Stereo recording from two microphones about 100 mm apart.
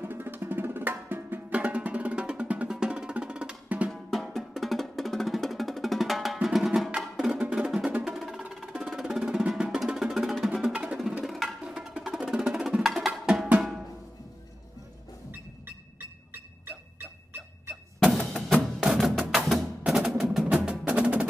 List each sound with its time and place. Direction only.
0.0 s music: 20° right (ahead or behind)
3.9 s music: centre (ahead or behind)
10.7 s music: 15° right (ahead or behind)
13.6 s drum: 5° right (ahead or behind)
16.6 s a sound: 20° right (ahead or behind)
18.0 s percussion: 5° left (ahead or behind)
19.9 s music: centre (ahead or behind)
20.4 s wood block: 5° right (ahead or behind)